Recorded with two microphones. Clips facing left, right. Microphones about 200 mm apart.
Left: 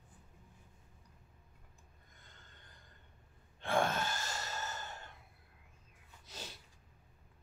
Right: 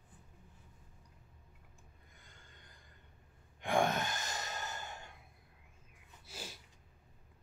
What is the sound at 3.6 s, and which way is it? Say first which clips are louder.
Sigh: right 1 dB; 15° right (ahead or behind).